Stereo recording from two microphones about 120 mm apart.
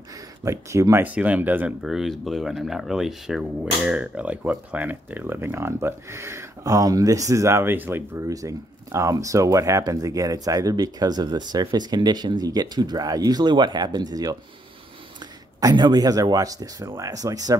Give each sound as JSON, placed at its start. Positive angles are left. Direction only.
{"t": 0.5, "sound": "speech", "side_deg": -25}
{"t": 1.0, "sound": "speech", "side_deg": -10}
{"t": 1.8, "sound": "speech", "side_deg": -5}
{"t": 15.6, "sound": "speech", "side_deg": -35}